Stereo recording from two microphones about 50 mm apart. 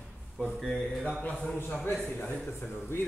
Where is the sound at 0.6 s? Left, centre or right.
Centre.